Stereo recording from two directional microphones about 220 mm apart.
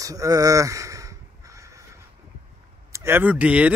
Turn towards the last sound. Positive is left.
turn(degrees=-5)  # may be behind; listen again after turning